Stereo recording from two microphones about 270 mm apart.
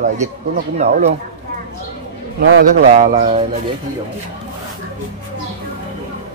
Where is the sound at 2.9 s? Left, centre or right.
Right.